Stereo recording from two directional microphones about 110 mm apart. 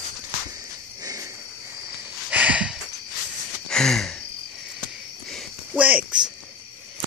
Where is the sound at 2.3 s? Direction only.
10° right (ahead or behind).